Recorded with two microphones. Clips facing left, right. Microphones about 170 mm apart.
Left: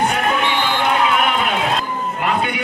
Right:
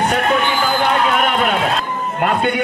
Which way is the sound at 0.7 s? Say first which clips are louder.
Right 1 dB; 45° right (ahead or behind).